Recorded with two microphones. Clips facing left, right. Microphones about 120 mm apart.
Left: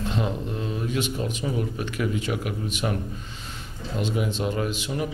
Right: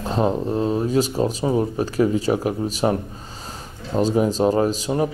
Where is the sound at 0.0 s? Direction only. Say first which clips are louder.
Right 7 dB; 35° right (ahead or behind).